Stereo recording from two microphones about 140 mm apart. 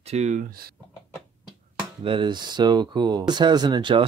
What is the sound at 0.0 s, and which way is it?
Speech, 50° right (ahead or behind).